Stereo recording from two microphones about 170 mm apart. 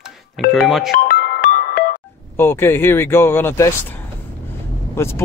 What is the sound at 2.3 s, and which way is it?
Speech, 15° left (ahead or behind).